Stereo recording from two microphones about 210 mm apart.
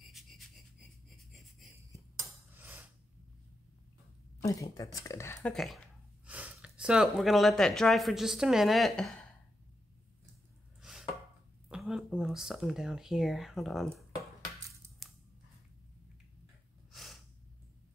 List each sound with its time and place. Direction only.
0.2 s a sound: centre (ahead or behind)
2.5 s a sound: 10° right (ahead or behind)
4.4 s speech: 15° left (ahead or behind)
10.8 s chopping: centre (ahead or behind)
11.7 s speech: centre (ahead or behind)
15.0 s scissors: centre (ahead or behind)
16.9 s sneeze: centre (ahead or behind)